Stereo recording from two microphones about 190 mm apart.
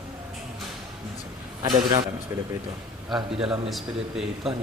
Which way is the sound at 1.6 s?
25° right (ahead or behind).